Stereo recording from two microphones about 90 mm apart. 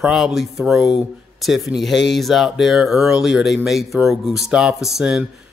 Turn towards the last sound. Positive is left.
turn(degrees=-5)  # may be behind; listen again after turning